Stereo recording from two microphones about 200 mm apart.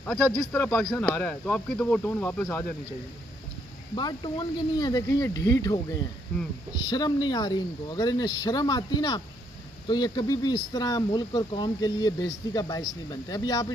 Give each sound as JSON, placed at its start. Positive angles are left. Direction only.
{"t": 0.0, "sound": "speech", "side_deg": 5}
{"t": 3.9, "sound": "speech", "side_deg": 20}
{"t": 6.9, "sound": "speech", "side_deg": 20}